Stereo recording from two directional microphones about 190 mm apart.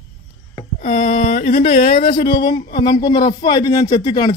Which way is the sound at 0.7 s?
40° left (ahead or behind).